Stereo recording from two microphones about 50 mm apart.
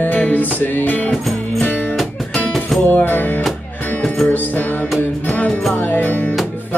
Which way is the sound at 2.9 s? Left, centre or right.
Left.